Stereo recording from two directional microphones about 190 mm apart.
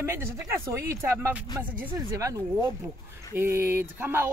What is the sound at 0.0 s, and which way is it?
Speech, 15° right (ahead or behind).